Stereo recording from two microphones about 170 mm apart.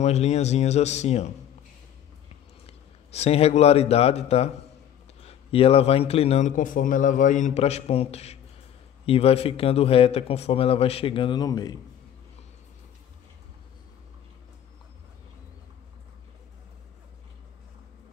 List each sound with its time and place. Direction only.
0.0 s a man's voice: 40° left (ahead or behind)
2.6 s a man's voice: 35° left (ahead or behind)